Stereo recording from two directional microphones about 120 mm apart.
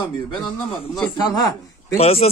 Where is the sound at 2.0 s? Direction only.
55° left (ahead or behind).